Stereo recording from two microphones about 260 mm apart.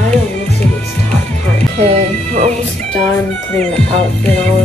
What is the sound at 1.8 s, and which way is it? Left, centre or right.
Speech, right.